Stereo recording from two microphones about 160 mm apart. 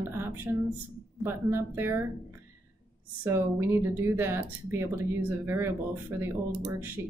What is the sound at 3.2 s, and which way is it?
A woman's voice, 15° right (ahead or behind).